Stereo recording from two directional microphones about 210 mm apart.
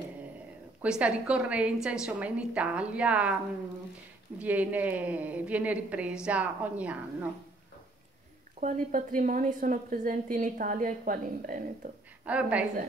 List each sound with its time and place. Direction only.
0.8 s a woman's voice: 5° right (ahead or behind)
4.4 s a woman's voice: 5° right (ahead or behind)
8.6 s a woman's voice: 45° right (ahead or behind)
12.3 s a woman's voice: 5° right (ahead or behind)